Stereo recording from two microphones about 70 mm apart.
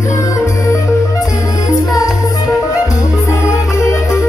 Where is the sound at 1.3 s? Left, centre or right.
Left.